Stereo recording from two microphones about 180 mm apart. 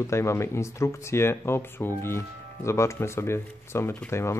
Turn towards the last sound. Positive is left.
turn(degrees=15)  # may be behind; listen again after turning